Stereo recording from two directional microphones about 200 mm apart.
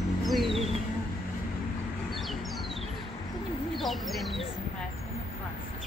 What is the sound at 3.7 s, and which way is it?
Speech, centre (ahead or behind).